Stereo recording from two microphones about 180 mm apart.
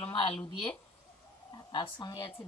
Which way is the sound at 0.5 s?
30° left (ahead or behind).